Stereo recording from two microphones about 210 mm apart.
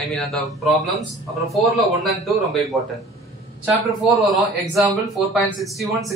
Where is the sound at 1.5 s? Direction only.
Centre (ahead or behind).